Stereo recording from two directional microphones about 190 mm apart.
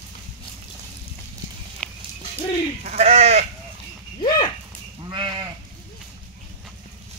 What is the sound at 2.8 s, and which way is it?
Sheep, 35° right (ahead or behind).